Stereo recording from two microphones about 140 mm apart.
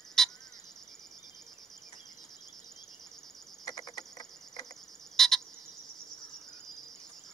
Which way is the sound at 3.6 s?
30° left (ahead or behind).